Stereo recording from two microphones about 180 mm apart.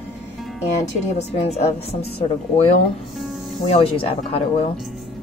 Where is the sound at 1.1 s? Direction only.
35° left (ahead or behind).